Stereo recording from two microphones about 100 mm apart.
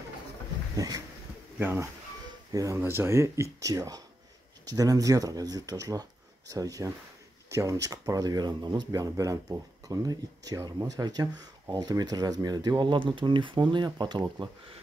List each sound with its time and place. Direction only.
0.7 s speech: 35° right (ahead or behind)
1.6 s speech: 20° right (ahead or behind)
2.5 s speech: 35° right (ahead or behind)
2.8 s speech: 25° right (ahead or behind); by 12.7 s 40° right (ahead or behind)
12.7 s speech: 55° right (ahead or behind)